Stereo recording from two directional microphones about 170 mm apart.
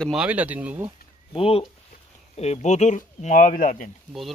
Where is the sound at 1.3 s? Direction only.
35° left (ahead or behind); by 3.8 s 55° left (ahead or behind).